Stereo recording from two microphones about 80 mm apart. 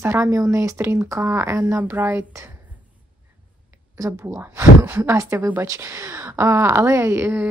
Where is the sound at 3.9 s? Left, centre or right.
Right.